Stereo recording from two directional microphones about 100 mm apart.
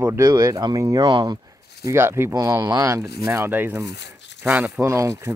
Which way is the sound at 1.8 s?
30° right (ahead or behind).